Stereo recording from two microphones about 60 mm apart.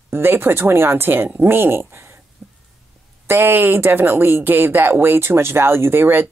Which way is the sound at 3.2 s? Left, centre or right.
Right.